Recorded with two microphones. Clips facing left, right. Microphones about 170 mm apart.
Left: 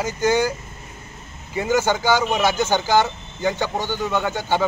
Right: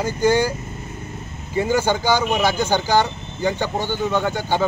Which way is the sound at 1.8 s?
15° right (ahead or behind).